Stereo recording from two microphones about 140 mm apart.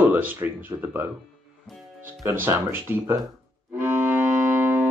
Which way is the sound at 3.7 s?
15° right (ahead or behind).